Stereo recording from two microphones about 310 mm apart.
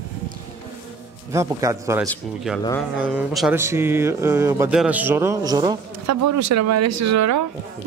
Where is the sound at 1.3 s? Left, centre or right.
Centre.